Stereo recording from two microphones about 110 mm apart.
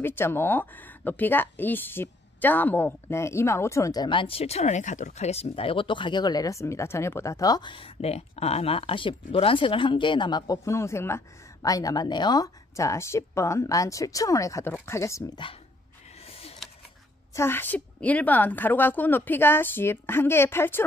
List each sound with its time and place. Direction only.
0.0 s speech: 20° left (ahead or behind); by 7.9 s 45° left (ahead or behind)
8.0 s speech: 70° left (ahead or behind); by 12.4 s 40° left (ahead or behind)
12.7 s speech: 25° left (ahead or behind)
16.3 s a sound: 65° left (ahead or behind)
17.3 s speech: 20° left (ahead or behind)